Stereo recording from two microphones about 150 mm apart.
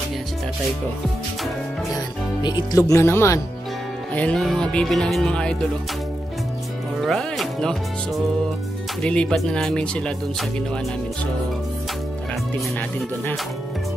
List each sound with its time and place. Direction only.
2.4 s speech: 30° left (ahead or behind)
2.9 s speech: 15° left (ahead or behind)
7.0 s speech: centre (ahead or behind)
12.7 s speech: 10° left (ahead or behind)